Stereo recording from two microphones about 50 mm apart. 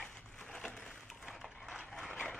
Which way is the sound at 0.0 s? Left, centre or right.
Centre.